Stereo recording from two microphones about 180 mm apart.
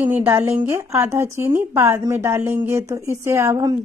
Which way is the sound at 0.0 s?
10° right (ahead or behind).